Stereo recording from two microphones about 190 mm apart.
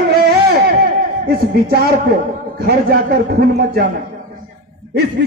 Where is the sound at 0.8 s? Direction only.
55° right (ahead or behind).